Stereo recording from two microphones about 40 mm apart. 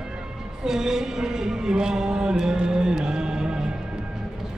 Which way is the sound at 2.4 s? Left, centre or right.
Centre.